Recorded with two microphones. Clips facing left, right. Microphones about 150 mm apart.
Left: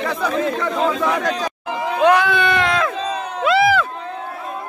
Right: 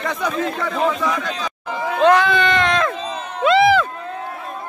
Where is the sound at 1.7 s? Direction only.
10° left (ahead or behind).